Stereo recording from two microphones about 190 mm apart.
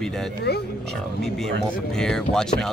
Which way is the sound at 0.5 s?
60° left (ahead or behind).